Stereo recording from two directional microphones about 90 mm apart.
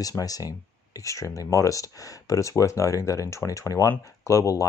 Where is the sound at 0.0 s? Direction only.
40° left (ahead or behind).